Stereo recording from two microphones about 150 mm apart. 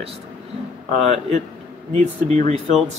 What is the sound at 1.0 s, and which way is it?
Speech, 45° right (ahead or behind).